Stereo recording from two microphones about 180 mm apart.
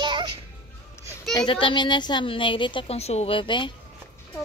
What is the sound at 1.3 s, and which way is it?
A child's voice, 25° left (ahead or behind).